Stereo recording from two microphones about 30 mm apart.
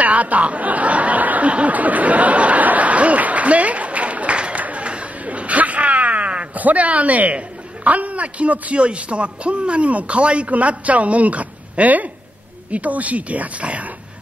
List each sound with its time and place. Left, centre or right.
0.0 s snicker: right
1.5 s a sound: right
4.8 s a sound: right
7.3 s a man's voice: right
8.7 s a man's voice: right
10.5 s a man's voice: right